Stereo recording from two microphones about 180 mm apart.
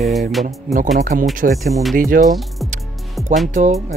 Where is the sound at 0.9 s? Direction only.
45° right (ahead or behind).